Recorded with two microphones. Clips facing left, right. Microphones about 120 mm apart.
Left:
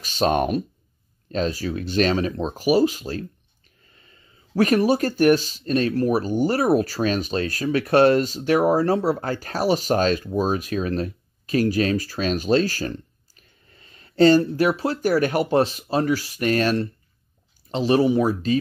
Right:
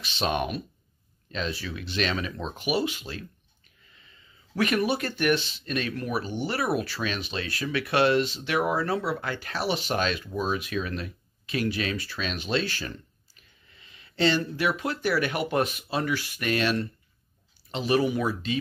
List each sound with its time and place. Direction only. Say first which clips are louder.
0.0 s speech: left 7 dB; 40° left (ahead or behind)